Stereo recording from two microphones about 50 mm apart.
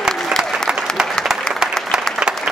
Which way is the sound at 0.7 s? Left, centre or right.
Right.